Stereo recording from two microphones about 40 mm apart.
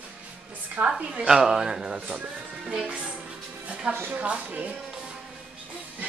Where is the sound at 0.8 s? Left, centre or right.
Right.